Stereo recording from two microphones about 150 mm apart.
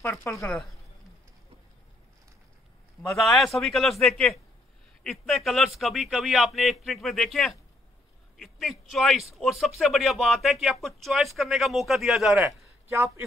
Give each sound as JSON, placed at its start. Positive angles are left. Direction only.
{"t": 0.0, "sound": "speech", "side_deg": 20}
{"t": 3.2, "sound": "speech", "side_deg": 0}
{"t": 12.4, "sound": "speech", "side_deg": -15}